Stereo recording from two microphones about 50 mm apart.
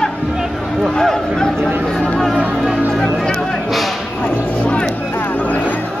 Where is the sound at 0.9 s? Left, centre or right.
Centre.